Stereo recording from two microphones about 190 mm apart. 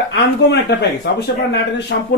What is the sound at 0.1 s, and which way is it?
Speech, 60° left (ahead or behind).